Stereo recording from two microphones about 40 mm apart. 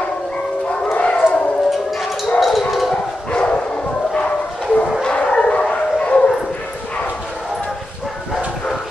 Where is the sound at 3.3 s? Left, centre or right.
Left.